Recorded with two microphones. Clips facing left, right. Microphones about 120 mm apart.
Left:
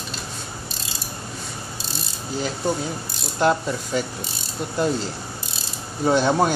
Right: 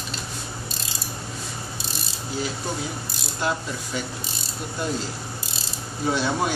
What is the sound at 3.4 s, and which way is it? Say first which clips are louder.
Speech: left 7 dB; 45° left (ahead or behind).